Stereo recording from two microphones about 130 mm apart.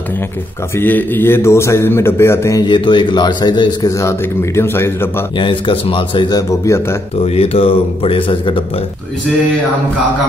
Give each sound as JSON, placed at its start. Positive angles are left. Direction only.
{"t": 0.7, "sound": "a man's voice", "side_deg": 15}
{"t": 2.6, "sound": "speech", "side_deg": 35}
{"t": 5.4, "sound": "speech", "side_deg": 40}
{"t": 7.2, "sound": "speech", "side_deg": 50}